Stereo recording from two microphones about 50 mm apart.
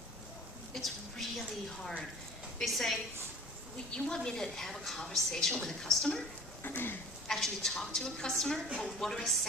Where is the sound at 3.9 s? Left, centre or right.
Centre.